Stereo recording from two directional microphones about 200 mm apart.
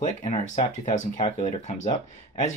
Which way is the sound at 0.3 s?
35° left (ahead or behind).